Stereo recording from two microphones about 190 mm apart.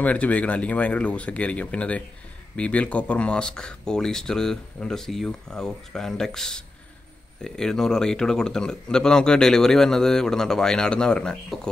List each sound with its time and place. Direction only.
0.0 s a man's voice: 5° left (ahead or behind)